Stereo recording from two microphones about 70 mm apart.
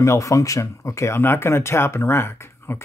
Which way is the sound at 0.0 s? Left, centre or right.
Left.